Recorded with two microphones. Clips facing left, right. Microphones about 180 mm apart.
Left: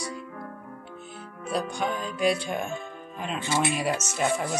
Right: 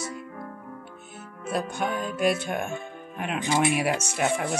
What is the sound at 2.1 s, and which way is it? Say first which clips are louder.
Speech: even; centre (ahead or behind).